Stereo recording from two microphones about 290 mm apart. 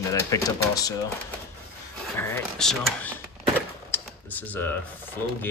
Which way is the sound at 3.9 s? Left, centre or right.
Centre.